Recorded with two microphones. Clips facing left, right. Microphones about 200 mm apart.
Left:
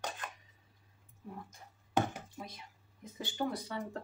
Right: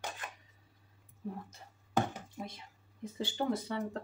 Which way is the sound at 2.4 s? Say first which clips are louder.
Right 3 dB; 25° right (ahead or behind).